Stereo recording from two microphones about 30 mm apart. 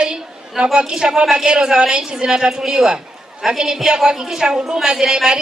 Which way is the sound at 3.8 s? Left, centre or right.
Centre.